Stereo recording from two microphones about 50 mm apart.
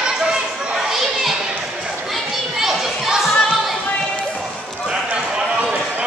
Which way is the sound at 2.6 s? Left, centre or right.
Centre.